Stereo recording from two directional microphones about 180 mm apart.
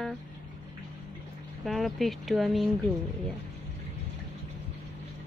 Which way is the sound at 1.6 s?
Centre (ahead or behind).